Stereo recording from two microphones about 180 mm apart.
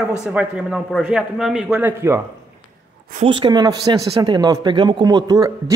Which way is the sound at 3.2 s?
25° right (ahead or behind).